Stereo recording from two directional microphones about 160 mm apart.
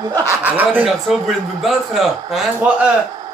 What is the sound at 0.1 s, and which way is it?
Speech, 20° right (ahead or behind).